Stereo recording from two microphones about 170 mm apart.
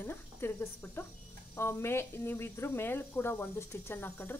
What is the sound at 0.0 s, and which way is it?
Speech, 15° left (ahead or behind).